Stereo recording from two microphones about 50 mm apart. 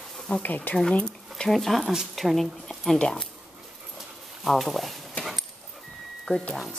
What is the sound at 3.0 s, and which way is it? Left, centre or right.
Speech, centre.